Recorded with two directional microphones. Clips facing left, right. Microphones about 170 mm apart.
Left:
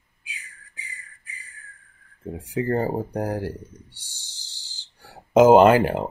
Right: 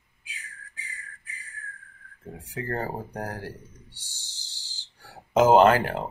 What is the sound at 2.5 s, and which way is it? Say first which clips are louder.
Speech: left 8 dB; 15° left (ahead or behind).